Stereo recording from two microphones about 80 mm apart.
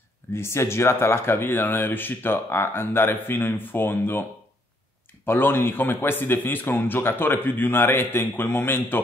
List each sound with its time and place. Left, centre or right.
0.3 s speech: left